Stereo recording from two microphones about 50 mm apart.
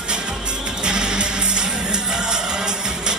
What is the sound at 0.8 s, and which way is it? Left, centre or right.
Music, centre.